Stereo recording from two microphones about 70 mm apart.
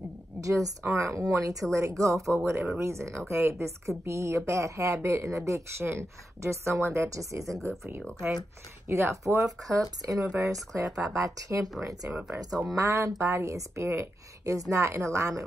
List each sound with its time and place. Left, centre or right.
0.4 s speech: right
2.4 s speech: right
8.8 s speech: right
9.7 s speech: right
12.1 s speech: right
12.4 s speech: centre
12.7 s speech: right